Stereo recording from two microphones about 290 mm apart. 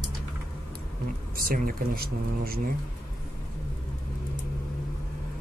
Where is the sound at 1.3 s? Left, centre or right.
Right.